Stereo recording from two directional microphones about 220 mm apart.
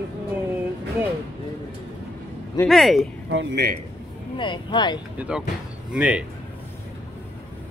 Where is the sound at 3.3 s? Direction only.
50° right (ahead or behind).